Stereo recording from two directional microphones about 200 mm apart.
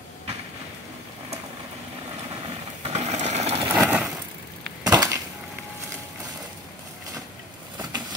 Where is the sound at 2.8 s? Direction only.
35° right (ahead or behind).